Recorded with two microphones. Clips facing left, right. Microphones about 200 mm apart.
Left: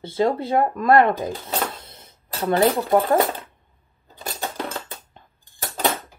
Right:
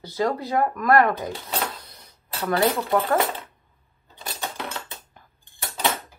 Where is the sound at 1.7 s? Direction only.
25° left (ahead or behind).